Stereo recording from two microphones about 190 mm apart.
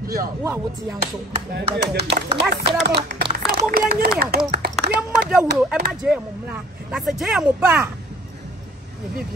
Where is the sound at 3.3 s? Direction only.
55° right (ahead or behind).